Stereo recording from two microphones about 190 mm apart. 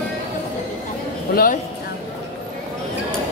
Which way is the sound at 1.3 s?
50° left (ahead or behind).